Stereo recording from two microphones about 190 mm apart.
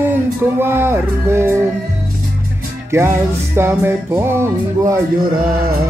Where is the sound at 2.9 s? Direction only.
15° right (ahead or behind).